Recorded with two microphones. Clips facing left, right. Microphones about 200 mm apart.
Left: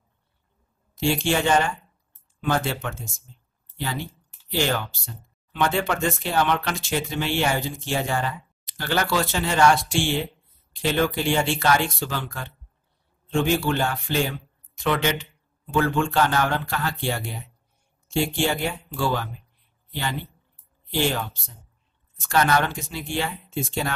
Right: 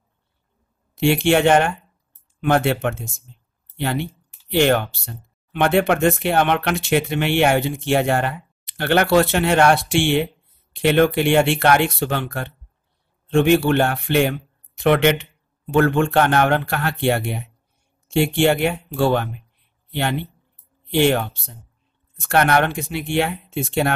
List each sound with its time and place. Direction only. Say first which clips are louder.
0.9 s speech: right 6 dB; 65° right (ahead or behind)